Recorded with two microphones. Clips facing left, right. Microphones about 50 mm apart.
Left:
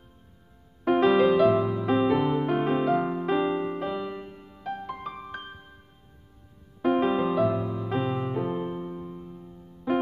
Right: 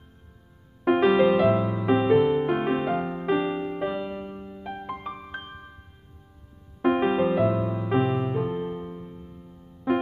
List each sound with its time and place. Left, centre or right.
0.8 s music: centre
6.8 s music: centre